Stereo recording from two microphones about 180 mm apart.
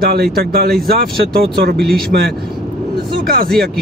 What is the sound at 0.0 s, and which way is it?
Speech, 60° right (ahead or behind).